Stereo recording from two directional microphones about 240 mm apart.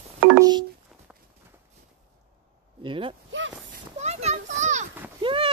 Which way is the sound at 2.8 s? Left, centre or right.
Right.